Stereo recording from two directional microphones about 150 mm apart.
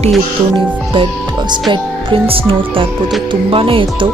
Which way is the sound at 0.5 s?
35° right (ahead or behind).